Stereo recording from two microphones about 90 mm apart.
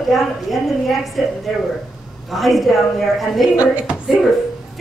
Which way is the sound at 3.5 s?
15° right (ahead or behind).